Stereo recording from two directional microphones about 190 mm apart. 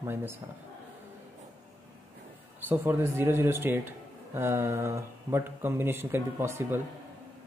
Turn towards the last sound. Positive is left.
turn(degrees=-10)  # may be behind; listen again after turning